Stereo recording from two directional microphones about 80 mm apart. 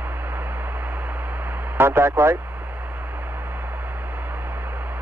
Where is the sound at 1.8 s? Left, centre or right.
Right.